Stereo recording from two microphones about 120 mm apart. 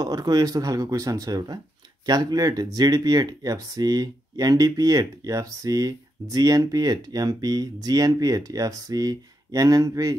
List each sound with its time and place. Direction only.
0.0 s speech: 30° right (ahead or behind)